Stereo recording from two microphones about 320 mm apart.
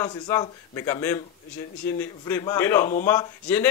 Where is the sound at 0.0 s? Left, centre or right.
Centre.